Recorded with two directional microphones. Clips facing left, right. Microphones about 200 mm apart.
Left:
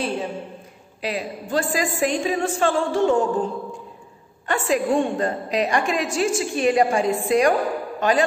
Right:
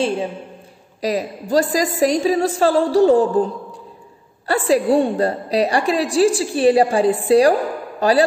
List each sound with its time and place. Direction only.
1.0 s a woman's voice: 40° right (ahead or behind)